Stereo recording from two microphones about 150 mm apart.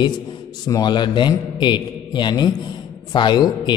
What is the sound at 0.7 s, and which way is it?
A man's voice, 25° left (ahead or behind).